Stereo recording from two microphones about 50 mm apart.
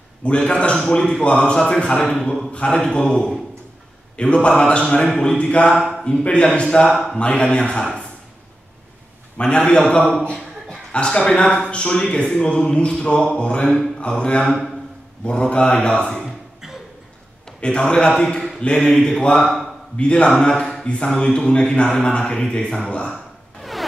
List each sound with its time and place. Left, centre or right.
0.2 s a man's voice: centre
5.7 s speech: centre
6.5 s a man's voice: centre
6.9 s speech: centre
7.2 s a man's voice: left
9.4 s a man's voice: centre
13.9 s a sound: centre
15.2 s speech: centre
17.6 s speech: centre
20.0 s a man's voice: centre
23.1 s a sound: centre